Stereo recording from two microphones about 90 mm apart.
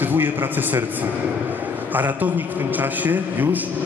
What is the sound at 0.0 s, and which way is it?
A man's voice, 20° right (ahead or behind).